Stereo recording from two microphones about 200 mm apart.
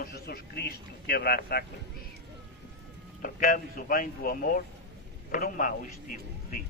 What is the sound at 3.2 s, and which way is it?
A man's voice, 40° left (ahead or behind).